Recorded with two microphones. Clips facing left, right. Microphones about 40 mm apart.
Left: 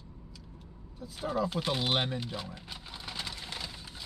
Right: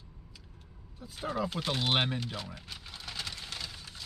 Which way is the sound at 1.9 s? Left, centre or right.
Centre.